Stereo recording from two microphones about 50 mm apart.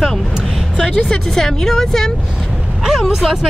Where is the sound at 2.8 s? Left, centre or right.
Centre.